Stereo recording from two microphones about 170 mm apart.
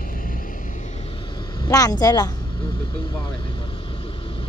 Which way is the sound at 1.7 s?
20° left (ahead or behind).